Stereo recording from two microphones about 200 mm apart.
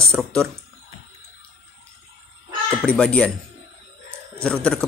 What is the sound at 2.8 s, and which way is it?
Speech, 5° left (ahead or behind).